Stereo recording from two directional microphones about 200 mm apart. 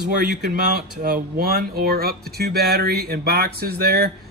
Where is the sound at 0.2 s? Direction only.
45° right (ahead or behind).